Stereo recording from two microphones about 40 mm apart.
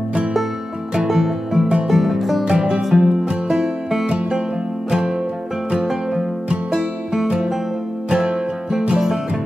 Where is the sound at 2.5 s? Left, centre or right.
Centre.